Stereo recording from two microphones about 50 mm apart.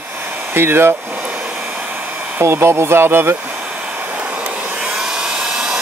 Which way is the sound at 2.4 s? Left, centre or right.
Right.